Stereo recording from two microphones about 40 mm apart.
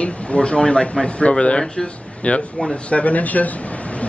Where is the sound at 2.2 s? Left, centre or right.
Left.